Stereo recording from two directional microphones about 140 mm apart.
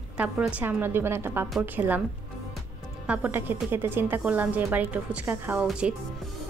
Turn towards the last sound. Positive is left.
turn(degrees=-10)  # may be behind; listen again after turning